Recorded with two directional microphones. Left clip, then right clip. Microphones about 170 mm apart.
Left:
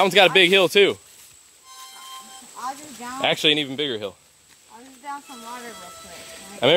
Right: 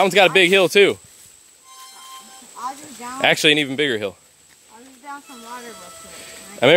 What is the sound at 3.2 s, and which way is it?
Speech, 30° right (ahead or behind).